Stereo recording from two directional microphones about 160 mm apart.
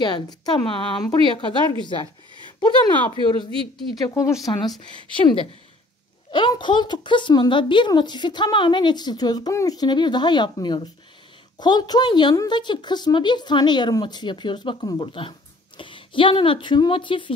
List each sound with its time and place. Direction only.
0.0 s speech: 25° left (ahead or behind)
3.9 s speech: 20° left (ahead or behind)